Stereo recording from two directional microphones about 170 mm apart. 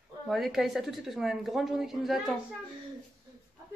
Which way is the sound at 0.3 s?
Centre (ahead or behind).